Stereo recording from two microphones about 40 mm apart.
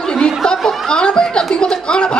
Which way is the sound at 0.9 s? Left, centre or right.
Centre.